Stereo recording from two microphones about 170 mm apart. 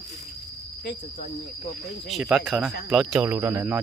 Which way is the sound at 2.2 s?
10° right (ahead or behind).